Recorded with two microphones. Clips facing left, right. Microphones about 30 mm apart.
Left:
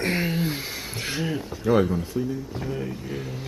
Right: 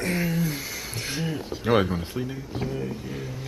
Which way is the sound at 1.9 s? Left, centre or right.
Right.